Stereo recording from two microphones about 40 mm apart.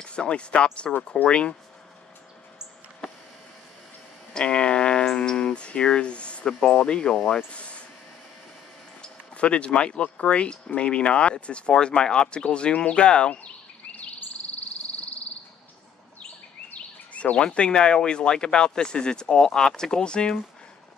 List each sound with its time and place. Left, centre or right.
0.0 s speech: left
4.3 s speech: left
7.5 s a sound: left
9.0 s speech: left
17.1 s speech: left